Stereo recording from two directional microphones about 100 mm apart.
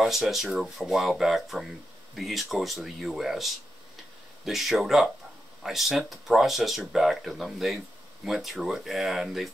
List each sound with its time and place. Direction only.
0.0 s speech: centre (ahead or behind)